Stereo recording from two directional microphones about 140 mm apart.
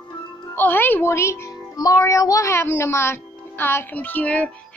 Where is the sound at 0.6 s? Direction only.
15° left (ahead or behind).